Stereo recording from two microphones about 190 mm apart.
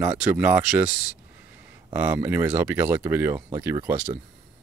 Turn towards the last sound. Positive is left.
turn(degrees=-10)  # may be behind; listen again after turning